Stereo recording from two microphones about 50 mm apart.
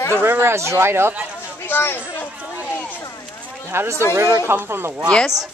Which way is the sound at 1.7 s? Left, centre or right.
Left.